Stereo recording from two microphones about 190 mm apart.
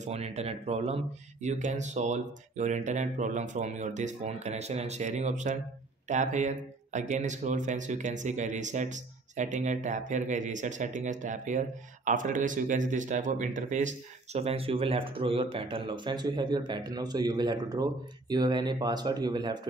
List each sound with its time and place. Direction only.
0.0 s speech: 35° right (ahead or behind)